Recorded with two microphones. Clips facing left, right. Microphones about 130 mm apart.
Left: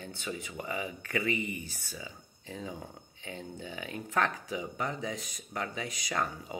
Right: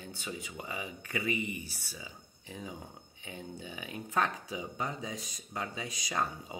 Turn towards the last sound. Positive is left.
turn(degrees=-15)  # may be behind; listen again after turning